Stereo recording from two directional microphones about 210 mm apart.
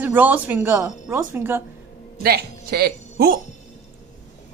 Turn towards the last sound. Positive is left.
turn(degrees=-50)  # may be behind; listen again after turning